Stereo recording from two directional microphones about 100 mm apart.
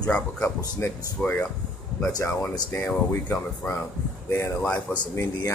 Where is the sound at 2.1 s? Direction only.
35° left (ahead or behind).